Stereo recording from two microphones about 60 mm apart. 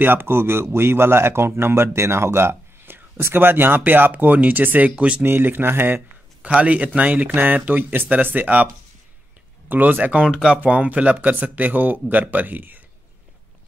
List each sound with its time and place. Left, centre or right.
0.0 s speech: right
5.2 s speech: right
6.4 s speech: right
9.7 s speech: right
10.3 s speech: centre
10.6 s speech: right